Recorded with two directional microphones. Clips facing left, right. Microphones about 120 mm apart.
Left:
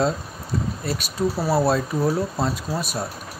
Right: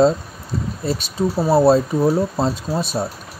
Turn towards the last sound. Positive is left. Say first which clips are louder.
# right 5 dB
turn(degrees=-25)  # may be behind; listen again after turning